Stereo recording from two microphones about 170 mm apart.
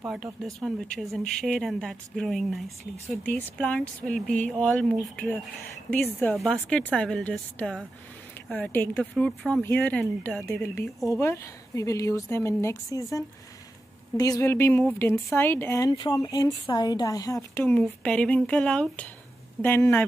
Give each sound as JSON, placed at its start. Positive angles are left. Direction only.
{"t": 0.1, "sound": "a woman's voice", "side_deg": 0}